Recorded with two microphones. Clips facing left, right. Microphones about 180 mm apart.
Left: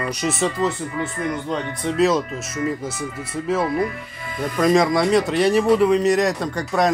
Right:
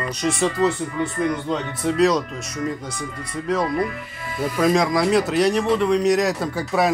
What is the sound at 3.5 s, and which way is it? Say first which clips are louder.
Speech: left 1 dB; 5° left (ahead or behind).